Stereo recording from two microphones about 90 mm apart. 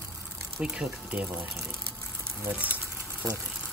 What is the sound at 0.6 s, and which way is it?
Speech, 15° right (ahead or behind).